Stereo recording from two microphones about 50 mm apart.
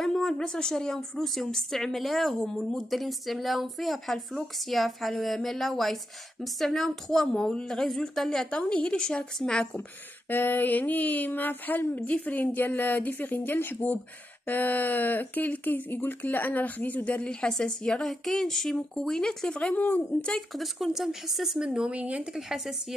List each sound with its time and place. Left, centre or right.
0.0 s a woman's voice: centre
8.5 s a woman's voice: left
10.3 s speech: left; by 19.7 s centre
19.7 s speech: left
20.2 s speech: centre
20.5 s speech: centre
21.5 s speech: centre
22.3 s speech: centre